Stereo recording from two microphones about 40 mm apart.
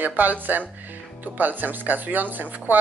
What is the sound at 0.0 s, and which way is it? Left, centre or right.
Speech, right.